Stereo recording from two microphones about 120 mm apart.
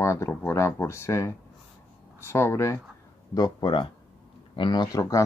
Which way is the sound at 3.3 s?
40° left (ahead or behind).